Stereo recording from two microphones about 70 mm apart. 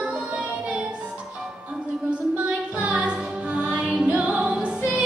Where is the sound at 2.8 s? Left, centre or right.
Right.